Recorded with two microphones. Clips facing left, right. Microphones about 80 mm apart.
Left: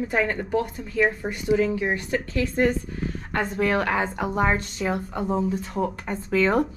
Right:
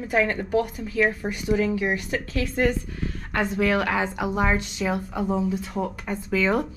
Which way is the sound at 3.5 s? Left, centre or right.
Left.